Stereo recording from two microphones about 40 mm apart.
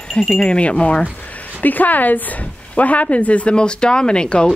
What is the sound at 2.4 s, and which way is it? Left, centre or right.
Speech, left.